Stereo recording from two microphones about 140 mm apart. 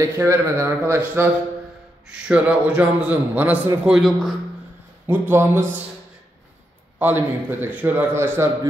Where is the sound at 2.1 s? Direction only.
5° right (ahead or behind).